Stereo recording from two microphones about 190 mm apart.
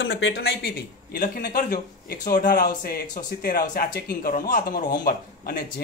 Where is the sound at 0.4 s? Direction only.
55° left (ahead or behind).